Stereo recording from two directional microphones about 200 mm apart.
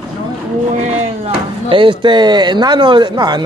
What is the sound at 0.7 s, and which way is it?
Speech, 35° right (ahead or behind).